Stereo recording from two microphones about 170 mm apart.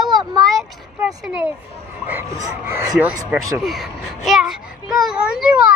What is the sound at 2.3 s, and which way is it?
Speech, 20° right (ahead or behind).